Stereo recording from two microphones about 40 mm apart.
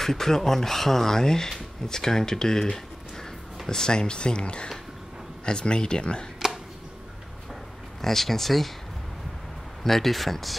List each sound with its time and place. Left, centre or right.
0.0 s speech: centre
8.0 s speech: centre
9.8 s speech: centre